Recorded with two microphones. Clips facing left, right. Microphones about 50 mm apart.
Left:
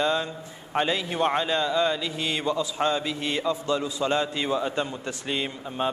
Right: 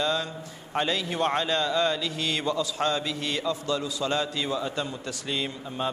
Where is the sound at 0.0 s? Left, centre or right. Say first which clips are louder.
Left 2 dB; left.